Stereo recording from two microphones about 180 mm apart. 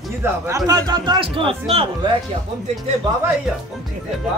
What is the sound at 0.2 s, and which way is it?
Speech, 20° right (ahead or behind).